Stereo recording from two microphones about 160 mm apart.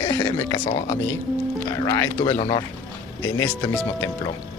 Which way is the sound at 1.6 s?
20° left (ahead or behind).